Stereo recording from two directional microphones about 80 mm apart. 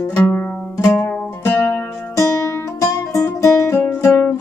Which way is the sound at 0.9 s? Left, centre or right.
Left.